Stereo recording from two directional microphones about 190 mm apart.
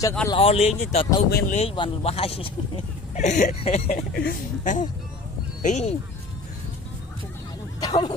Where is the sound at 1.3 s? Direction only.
55° left (ahead or behind).